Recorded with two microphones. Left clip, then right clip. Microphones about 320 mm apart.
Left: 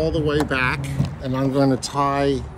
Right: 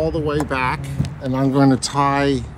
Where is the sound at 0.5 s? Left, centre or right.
Centre.